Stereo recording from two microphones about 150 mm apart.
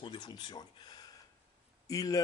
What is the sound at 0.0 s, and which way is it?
Speech, 30° left (ahead or behind).